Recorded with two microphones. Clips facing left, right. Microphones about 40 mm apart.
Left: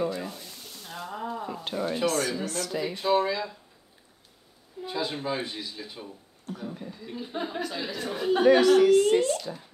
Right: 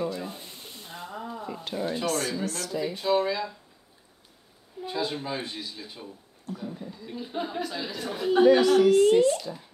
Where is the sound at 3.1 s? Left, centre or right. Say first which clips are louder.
Even; centre.